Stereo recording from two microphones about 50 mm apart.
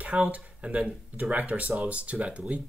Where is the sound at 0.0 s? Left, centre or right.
Right.